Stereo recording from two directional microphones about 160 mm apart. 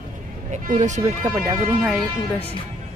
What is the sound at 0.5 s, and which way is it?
Speech, 50° right (ahead or behind).